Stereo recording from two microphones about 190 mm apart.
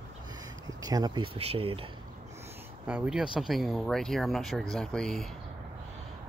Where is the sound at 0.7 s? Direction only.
20° right (ahead or behind).